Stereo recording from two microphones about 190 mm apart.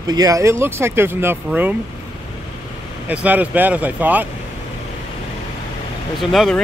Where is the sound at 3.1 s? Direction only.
10° right (ahead or behind).